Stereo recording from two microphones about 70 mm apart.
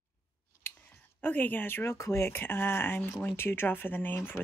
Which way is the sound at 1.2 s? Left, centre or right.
Left.